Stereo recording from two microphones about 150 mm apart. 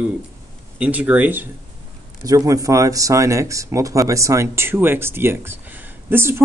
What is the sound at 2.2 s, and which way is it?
Speech, 25° right (ahead or behind).